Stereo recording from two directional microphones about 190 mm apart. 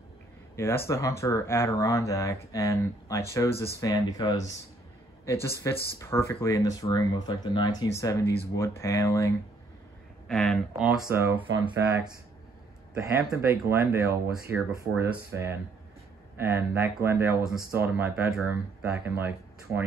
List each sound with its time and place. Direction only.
0.6 s speech: 15° left (ahead or behind)
10.2 s speech: centre (ahead or behind)
11.1 s speech: 15° right (ahead or behind)
13.4 s speech: 15° right (ahead or behind)